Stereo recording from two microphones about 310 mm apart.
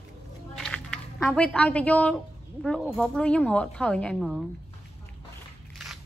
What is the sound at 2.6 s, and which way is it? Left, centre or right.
A woman's voice, centre.